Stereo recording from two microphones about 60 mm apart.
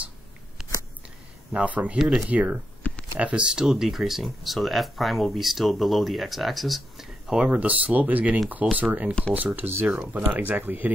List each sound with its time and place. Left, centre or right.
0.6 s biting: centre
1.5 s speech: right
2.8 s a sound: left
3.2 s speech: centre
7.3 s speech: right